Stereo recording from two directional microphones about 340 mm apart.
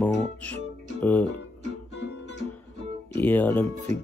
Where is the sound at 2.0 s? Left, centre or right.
Left.